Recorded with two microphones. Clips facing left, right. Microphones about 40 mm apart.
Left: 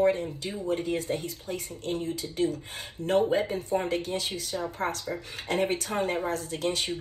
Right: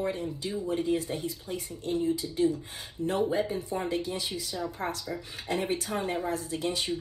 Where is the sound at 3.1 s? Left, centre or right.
Left.